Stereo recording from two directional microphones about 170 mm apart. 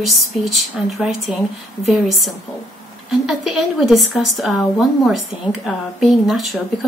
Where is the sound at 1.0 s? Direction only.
Centre (ahead or behind).